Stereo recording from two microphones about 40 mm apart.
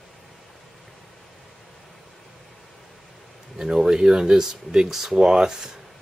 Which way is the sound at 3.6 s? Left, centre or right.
Centre.